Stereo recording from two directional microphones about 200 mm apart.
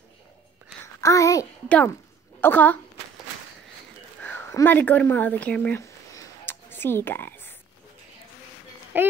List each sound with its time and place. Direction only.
1.0 s a child's voice: 15° left (ahead or behind)
4.2 s a sound: 10° left (ahead or behind)
8.9 s a child's voice: 10° right (ahead or behind)